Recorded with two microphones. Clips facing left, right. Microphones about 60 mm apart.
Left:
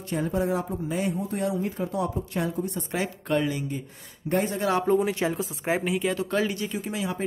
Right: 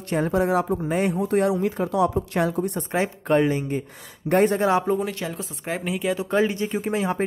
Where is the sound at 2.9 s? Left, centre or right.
Right.